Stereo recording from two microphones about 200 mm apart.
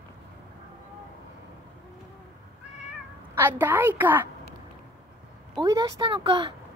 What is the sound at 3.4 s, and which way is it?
Speech, 10° right (ahead or behind).